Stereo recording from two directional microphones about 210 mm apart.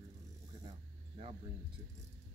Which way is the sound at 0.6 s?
30° right (ahead or behind).